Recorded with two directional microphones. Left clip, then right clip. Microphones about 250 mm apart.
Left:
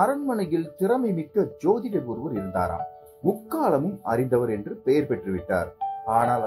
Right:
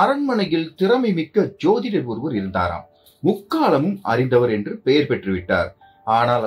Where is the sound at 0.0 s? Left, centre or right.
Left.